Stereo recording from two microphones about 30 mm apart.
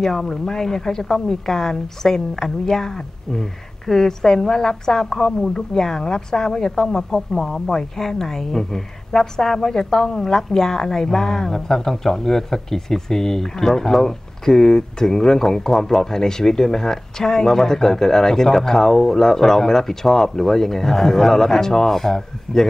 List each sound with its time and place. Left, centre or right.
0.0 s speech: centre
7.7 s speech: centre